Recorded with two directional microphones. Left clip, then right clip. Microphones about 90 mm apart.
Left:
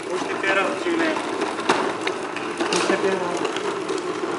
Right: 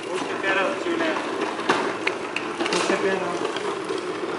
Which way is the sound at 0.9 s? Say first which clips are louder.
Left 2 dB; 15° left (ahead or behind).